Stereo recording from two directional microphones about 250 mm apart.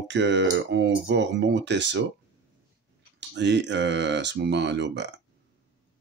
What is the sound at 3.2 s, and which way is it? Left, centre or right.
Speech, right.